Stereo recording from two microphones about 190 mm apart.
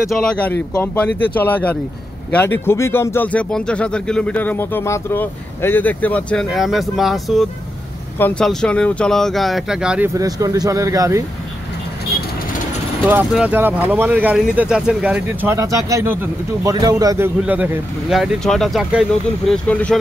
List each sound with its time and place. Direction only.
0.0 s speech: centre (ahead or behind); by 11.2 s 15° right (ahead or behind)
13.0 s a man's voice: 5° right (ahead or behind)